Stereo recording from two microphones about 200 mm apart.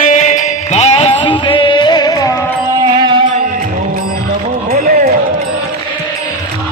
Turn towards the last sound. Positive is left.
turn(degrees=-50)  # may be behind; listen again after turning